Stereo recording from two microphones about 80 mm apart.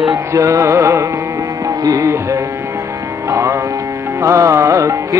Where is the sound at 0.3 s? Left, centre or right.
Right.